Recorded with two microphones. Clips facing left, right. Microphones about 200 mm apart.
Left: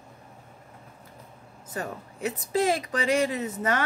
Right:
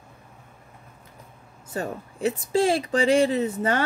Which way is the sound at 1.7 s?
30° right (ahead or behind).